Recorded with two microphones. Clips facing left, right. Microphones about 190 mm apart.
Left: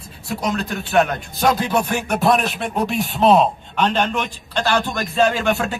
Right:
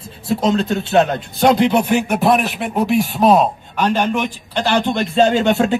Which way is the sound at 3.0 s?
5° right (ahead or behind).